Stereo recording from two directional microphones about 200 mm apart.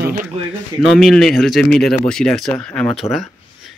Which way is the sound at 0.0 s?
45° right (ahead or behind).